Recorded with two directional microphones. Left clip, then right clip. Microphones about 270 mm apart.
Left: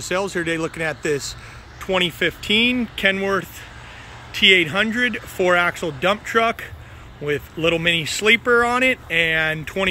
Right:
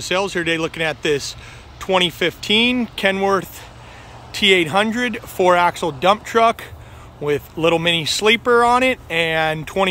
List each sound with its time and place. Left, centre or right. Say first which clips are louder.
0.0 s speech: right 3 dB; centre
2.4 s speech: right 2 dB; right
2.7 s speech: right 1 dB; centre